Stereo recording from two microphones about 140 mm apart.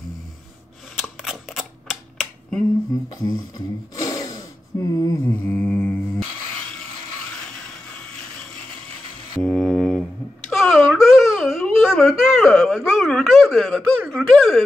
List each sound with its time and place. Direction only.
0.9 s camera: centre (ahead or behind)
3.3 s a sound: 25° left (ahead or behind)
4.9 s mantra: 25° left (ahead or behind)
5.2 s mantra: 10° left (ahead or behind)
9.4 s mantra: 5° left (ahead or behind)
10.5 s wail: centre (ahead or behind)
12.9 s a sound: 5° left (ahead or behind)